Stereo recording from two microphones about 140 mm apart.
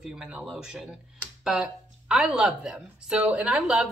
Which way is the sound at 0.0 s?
5° right (ahead or behind).